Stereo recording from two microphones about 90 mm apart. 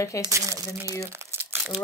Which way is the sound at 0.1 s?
35° left (ahead or behind).